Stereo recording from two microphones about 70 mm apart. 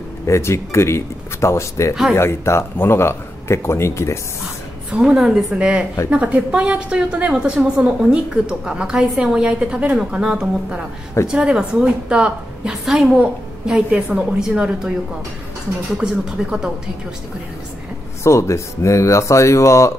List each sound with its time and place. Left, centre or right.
0.3 s speech: left
4.9 s a woman's voice: centre
16.3 s a woman's voice: centre
18.2 s speech: left